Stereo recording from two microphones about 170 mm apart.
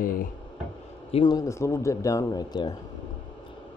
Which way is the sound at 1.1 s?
30° left (ahead or behind).